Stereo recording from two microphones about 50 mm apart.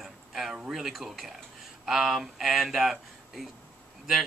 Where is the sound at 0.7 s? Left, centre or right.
Centre.